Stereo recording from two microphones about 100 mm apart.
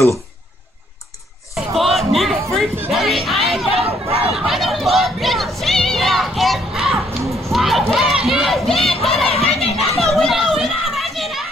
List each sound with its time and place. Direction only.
1.5 s a sound: centre (ahead or behind)
3.8 s chatter: 75° right (ahead or behind)
4.3 s music: centre (ahead or behind)
7.9 s crowd: 5° right (ahead or behind)
9.0 s chatter: centre (ahead or behind)
9.3 s a sound: 90° left
9.9 s children playing: centre (ahead or behind)